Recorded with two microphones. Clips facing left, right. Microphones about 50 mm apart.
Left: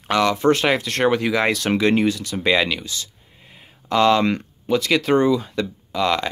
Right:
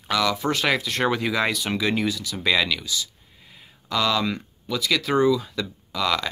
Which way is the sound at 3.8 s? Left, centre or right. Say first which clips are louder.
Left 7 dB; left.